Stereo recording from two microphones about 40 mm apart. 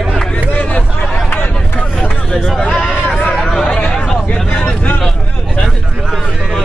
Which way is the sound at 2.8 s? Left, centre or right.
Left.